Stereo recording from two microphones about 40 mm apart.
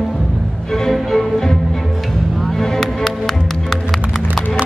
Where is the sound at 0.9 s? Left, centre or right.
Centre.